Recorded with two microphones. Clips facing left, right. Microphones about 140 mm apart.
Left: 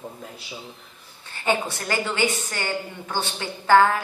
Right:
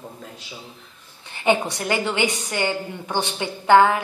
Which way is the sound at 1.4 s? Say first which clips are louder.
Right 4 dB; 20° right (ahead or behind).